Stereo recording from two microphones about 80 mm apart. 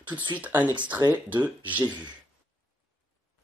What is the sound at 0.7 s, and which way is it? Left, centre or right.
Speech, right.